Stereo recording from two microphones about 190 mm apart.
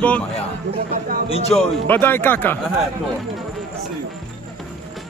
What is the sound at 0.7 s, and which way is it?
Speech, 50° right (ahead or behind).